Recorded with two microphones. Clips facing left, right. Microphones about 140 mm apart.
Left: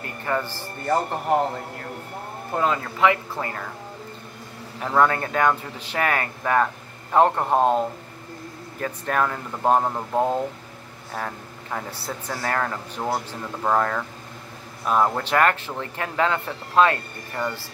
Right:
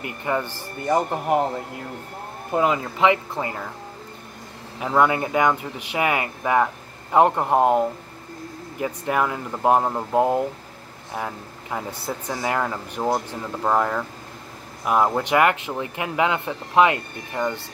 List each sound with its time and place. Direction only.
0.0 s speech: 15° right (ahead or behind)
2.5 s speech: 15° right (ahead or behind)
4.7 s a man's voice: 10° right (ahead or behind)